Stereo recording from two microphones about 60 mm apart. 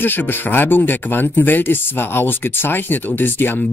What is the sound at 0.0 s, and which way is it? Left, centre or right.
Speech, left.